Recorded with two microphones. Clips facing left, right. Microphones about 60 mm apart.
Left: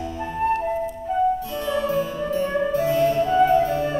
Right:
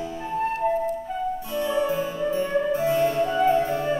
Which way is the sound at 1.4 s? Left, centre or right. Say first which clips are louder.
Even; centre.